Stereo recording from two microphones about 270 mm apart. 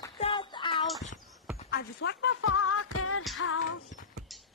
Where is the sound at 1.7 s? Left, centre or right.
Left.